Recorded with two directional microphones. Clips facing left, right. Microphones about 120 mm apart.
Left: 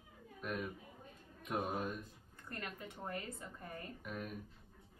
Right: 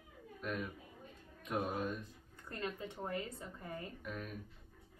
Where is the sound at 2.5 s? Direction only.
25° right (ahead or behind).